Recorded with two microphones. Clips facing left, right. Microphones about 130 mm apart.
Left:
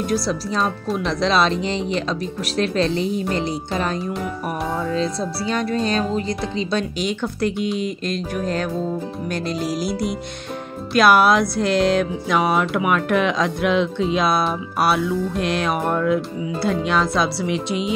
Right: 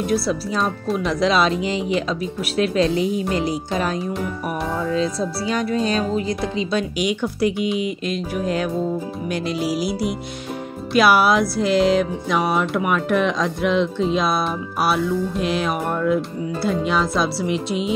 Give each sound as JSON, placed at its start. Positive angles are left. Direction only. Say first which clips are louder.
{"t": 0.1, "sound": "speech", "louder": "right 1 dB", "side_deg": -5}
{"t": 4.9, "sound": "speech", "louder": "right 1 dB", "side_deg": -5}
{"t": 10.9, "sound": "music", "louder": "left 1 dB", "side_deg": -5}